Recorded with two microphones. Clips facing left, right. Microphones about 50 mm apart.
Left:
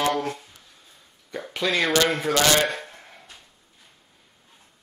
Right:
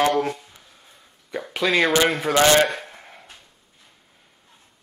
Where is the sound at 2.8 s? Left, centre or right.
Centre.